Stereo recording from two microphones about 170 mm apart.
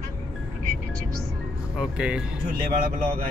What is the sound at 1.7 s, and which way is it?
Speech, 5° right (ahead or behind).